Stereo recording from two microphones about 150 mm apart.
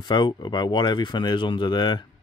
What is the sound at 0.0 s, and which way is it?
Speech, 30° left (ahead or behind).